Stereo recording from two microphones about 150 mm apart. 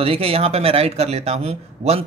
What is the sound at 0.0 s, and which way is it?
Speech, 40° right (ahead or behind).